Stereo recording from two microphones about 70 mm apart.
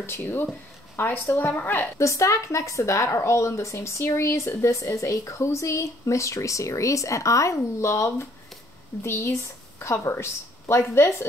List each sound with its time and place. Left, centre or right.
0.0 s a woman's voice: left
1.8 s a woman's voice: left